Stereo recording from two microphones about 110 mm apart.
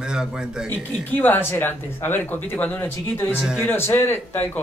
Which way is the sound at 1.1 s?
15° left (ahead or behind).